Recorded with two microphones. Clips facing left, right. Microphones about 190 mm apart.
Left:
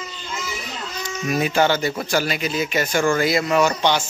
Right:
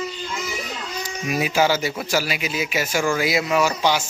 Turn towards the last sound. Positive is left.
turn(degrees=-5)  # may be behind; listen again after turning